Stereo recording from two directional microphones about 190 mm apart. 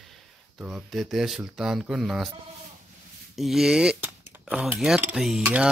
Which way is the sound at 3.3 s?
Centre (ahead or behind).